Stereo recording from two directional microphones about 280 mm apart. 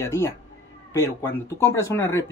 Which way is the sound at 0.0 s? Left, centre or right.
Centre.